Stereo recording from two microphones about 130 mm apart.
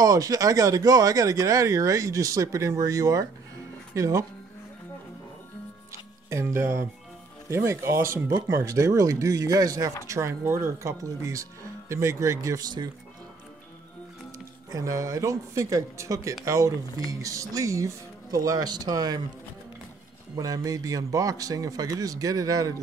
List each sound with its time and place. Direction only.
0.0 s speech: 25° right (ahead or behind)
6.3 s speech: 20° right (ahead or behind)
14.7 s speech: 25° right (ahead or behind)
20.3 s speech: 30° right (ahead or behind)